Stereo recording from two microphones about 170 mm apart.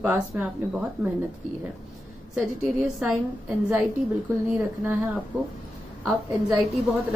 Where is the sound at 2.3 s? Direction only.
Centre (ahead or behind).